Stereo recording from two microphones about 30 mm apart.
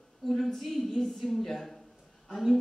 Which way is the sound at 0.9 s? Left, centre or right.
Centre.